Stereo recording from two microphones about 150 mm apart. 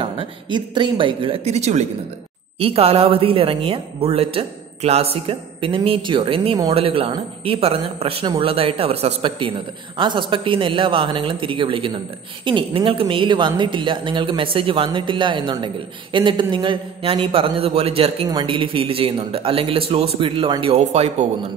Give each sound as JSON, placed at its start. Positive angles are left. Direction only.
{"t": 0.0, "sound": "speech", "side_deg": -30}